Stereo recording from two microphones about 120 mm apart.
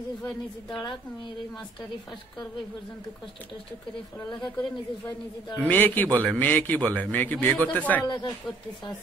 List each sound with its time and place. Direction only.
5.6 s a man's voice: 15° left (ahead or behind)
8.0 s speech: 40° left (ahead or behind)